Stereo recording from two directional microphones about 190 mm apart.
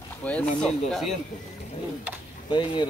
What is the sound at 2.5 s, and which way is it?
Speech, 25° left (ahead or behind).